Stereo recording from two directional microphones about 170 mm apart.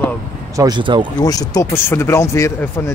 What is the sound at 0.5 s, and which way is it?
Speech, 25° right (ahead or behind).